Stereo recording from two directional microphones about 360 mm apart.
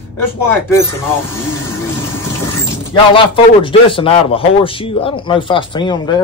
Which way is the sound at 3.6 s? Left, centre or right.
Centre.